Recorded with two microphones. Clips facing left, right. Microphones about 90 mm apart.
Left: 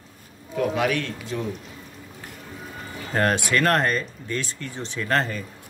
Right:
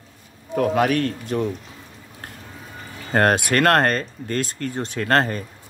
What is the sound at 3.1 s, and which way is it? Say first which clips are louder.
Speech: right 4 dB; 50° right (ahead or behind).